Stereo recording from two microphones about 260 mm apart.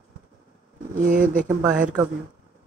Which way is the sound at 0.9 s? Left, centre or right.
Right.